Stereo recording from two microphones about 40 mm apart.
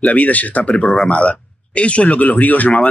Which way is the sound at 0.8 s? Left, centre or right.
Centre.